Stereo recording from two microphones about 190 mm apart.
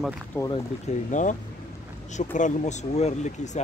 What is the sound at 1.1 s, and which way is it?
Speech, 40° left (ahead or behind).